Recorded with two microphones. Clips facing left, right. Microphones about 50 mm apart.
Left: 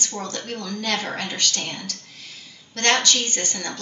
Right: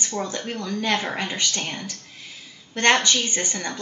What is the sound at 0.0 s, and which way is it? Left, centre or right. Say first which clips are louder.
Speech: right 2 dB; centre.